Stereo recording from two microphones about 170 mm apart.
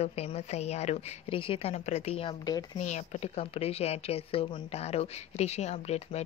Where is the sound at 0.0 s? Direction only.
35° left (ahead or behind).